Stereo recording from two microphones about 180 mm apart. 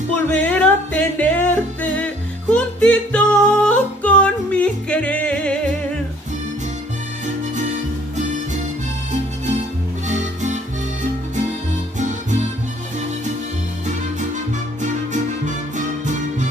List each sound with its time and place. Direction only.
0.1 s music: 10° left (ahead or behind)
10.0 s music: 45° right (ahead or behind)